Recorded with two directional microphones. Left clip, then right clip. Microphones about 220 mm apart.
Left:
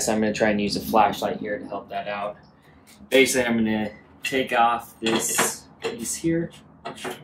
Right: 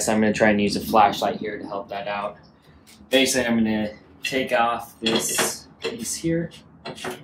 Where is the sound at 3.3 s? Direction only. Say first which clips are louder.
Right 1 dB; 15° right (ahead or behind).